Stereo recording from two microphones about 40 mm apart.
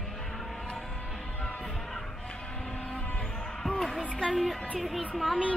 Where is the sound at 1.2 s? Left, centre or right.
Centre.